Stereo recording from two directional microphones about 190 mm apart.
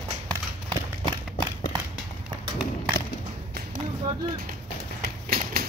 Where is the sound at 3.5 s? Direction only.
55° right (ahead or behind).